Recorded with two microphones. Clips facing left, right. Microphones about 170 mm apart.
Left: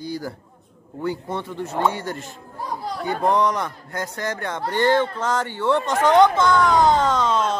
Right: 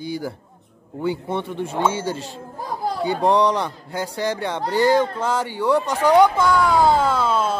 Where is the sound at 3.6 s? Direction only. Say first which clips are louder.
Right 2 dB; 10° right (ahead or behind).